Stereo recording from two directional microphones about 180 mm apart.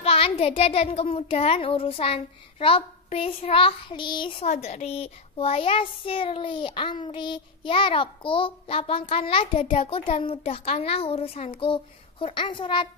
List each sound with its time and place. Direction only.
0.0 s a child's voice: 30° left (ahead or behind)
4.5 s a child's voice: 40° left (ahead or behind)